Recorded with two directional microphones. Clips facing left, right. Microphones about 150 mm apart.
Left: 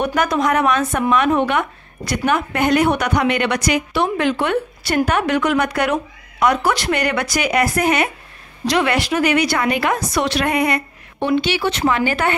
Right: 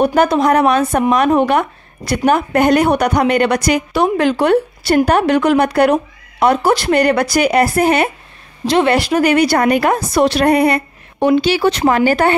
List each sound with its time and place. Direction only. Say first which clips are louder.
0.0 s speech: right 6 dB; 30° right (ahead or behind)
9.9 s speech: right 6 dB; 35° right (ahead or behind)